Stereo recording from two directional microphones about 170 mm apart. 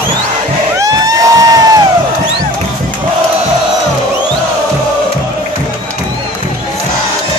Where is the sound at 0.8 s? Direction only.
20° right (ahead or behind).